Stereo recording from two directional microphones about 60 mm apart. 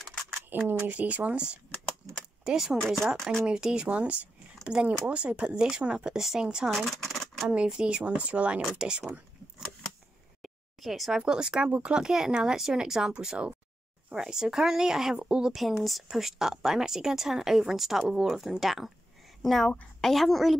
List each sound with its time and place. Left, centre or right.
0.0 s a sound: centre
0.8 s speech: right
2.4 s speech: centre
3.4 s speech: centre
6.7 s speech: centre
7.7 s speech: centre
10.4 s speech: centre
15.5 s speech: centre